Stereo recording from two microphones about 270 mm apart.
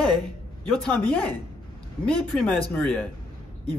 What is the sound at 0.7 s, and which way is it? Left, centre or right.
Speech, centre.